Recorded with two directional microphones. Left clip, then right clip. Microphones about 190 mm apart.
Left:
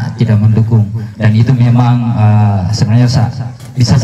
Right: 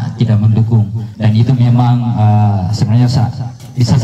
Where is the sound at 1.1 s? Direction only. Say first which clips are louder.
Left 2 dB; 40° left (ahead or behind).